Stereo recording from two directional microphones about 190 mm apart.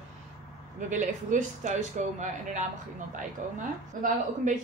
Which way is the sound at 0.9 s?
40° right (ahead or behind).